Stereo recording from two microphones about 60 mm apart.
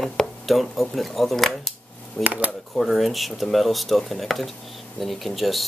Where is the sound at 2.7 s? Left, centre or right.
Centre.